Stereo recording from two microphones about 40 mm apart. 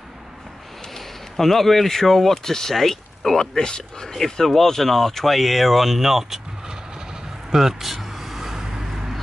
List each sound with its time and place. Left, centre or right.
0.9 s speech: centre
4.1 s speech: centre
7.5 s vehicle: centre